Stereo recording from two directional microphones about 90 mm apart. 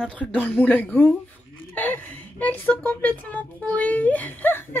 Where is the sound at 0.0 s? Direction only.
15° left (ahead or behind).